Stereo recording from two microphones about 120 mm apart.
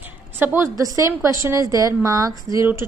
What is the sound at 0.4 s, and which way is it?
A woman's voice, 20° right (ahead or behind).